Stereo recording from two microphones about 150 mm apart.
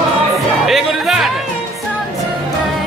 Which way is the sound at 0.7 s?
Centre (ahead or behind).